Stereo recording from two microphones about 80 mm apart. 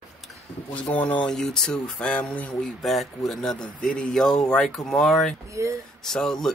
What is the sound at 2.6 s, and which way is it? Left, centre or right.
Speech, centre.